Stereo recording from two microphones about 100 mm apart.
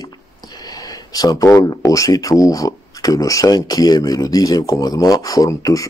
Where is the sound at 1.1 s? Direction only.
40° left (ahead or behind).